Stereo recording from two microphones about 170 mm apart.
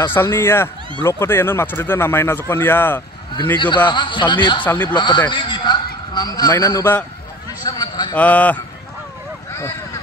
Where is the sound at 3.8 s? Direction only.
30° left (ahead or behind).